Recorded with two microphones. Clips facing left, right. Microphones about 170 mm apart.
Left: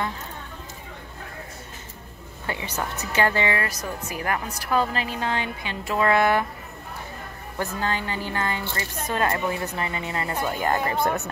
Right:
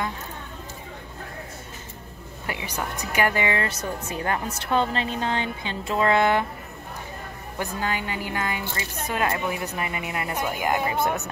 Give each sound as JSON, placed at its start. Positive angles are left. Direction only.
{"t": 2.6, "sound": "speech", "side_deg": -10}
{"t": 7.5, "sound": "speech", "side_deg": -15}